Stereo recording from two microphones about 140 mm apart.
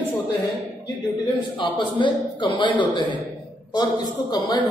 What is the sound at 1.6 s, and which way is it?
A man's voice, 35° left (ahead or behind).